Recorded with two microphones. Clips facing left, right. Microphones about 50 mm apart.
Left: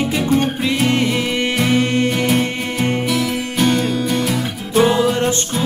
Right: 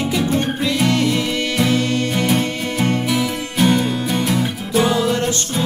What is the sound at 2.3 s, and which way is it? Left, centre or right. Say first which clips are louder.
Music: left 1 dB; centre.